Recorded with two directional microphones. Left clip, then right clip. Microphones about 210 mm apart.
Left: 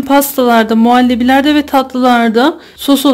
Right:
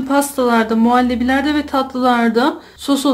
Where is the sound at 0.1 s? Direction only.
40° left (ahead or behind).